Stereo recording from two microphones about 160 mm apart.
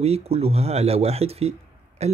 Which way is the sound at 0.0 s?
40° right (ahead or behind).